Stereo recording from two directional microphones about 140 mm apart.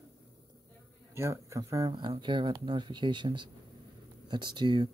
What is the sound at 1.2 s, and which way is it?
Speech, 20° right (ahead or behind).